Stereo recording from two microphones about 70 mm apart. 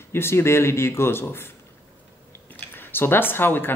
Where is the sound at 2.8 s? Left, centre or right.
Left.